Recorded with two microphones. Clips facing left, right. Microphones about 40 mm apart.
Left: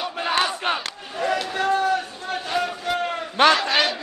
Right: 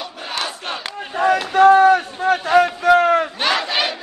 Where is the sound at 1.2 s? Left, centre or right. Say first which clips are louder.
Right 10 dB; right.